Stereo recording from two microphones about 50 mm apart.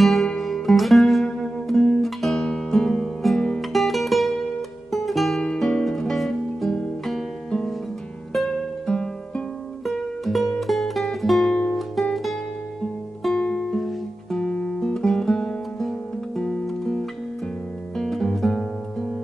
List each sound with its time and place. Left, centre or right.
0.0 s music: centre
3.7 s music: centre
8.3 s music: centre
13.3 s music: left
13.6 s music: centre
14.5 s music: centre